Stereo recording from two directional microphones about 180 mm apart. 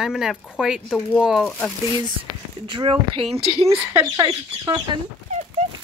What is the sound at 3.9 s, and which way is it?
Speech, 20° right (ahead or behind).